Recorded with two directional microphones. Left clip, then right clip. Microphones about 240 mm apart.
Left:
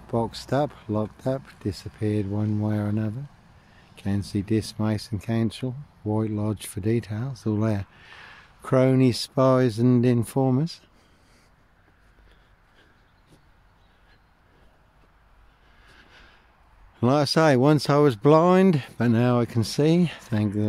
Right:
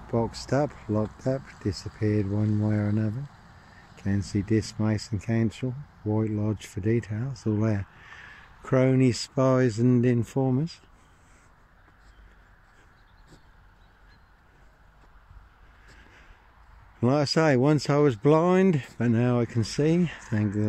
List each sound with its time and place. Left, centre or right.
0.0 s speech: centre
16.1 s a sound: left
17.0 s speech: centre